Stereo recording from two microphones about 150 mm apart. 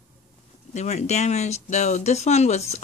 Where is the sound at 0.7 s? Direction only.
50° left (ahead or behind).